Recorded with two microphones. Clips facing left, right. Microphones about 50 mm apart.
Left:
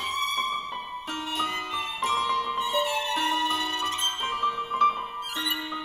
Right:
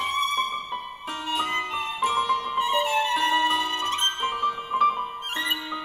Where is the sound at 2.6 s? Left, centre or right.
Right.